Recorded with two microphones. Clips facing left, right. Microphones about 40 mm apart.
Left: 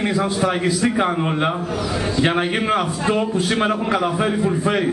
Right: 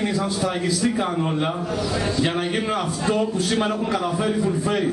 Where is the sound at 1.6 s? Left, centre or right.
Centre.